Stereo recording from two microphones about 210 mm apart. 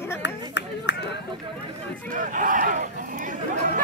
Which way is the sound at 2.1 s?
40° right (ahead or behind).